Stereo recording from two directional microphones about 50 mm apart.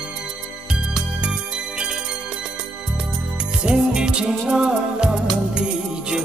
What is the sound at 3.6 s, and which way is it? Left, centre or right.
Music, centre.